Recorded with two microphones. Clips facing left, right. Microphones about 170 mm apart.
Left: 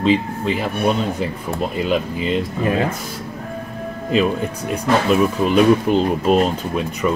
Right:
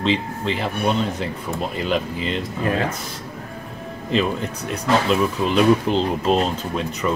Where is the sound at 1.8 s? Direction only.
5° left (ahead or behind).